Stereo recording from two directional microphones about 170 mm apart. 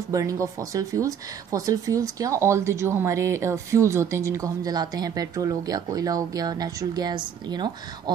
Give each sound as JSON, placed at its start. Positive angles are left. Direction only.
{"t": 0.1, "sound": "speech", "side_deg": -20}